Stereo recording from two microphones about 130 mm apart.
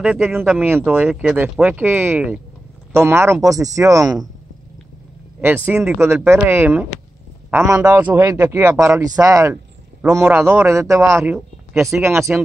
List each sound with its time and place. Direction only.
0.0 s speech: 5° right (ahead or behind); by 4.3 s 25° right (ahead or behind)
5.4 s speech: 15° right (ahead or behind)
10.2 s speech: 10° right (ahead or behind)
10.7 s speech: 25° right (ahead or behind)